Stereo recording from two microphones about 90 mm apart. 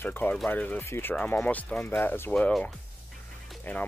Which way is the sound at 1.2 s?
15° left (ahead or behind).